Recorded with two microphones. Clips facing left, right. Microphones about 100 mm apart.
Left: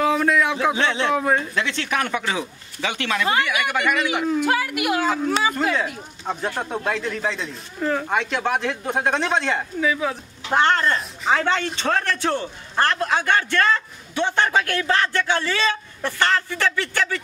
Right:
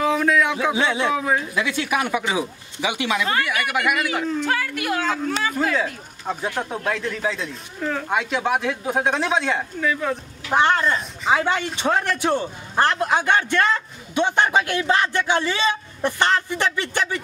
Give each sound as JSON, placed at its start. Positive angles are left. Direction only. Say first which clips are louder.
{"t": 0.0, "sound": "a sound", "louder": "even", "side_deg": 0}
{"t": 0.7, "sound": "speech", "louder": "right 1 dB", "side_deg": -10}
{"t": 1.1, "sound": "speech", "louder": "left 1 dB", "side_deg": 0}
{"t": 4.1, "sound": "speech", "louder": "left 2 dB", "side_deg": 5}
{"t": 10.5, "sound": "speech", "louder": "even", "side_deg": -10}